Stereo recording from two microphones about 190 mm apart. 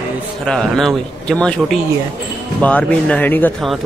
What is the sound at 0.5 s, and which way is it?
A man's voice, centre (ahead or behind).